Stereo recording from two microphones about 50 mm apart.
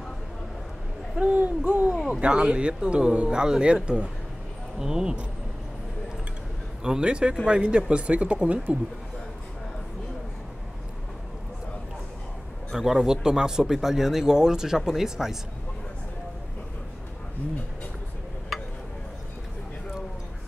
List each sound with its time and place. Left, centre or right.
1.2 s speech: right
6.8 s speech: centre
12.7 s speech: centre